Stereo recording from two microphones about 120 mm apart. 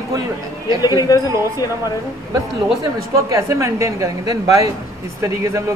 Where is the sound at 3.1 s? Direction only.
25° right (ahead or behind).